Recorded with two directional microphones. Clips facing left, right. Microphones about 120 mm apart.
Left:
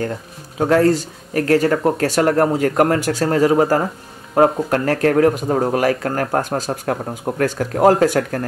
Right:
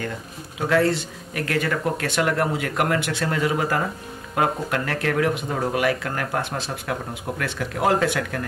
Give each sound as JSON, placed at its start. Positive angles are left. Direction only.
{"t": 0.6, "sound": "speech", "side_deg": 40}